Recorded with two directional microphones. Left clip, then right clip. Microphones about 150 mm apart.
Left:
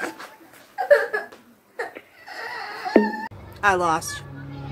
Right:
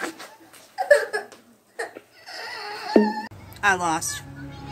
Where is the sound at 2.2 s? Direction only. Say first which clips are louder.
Left 2 dB; 90° right.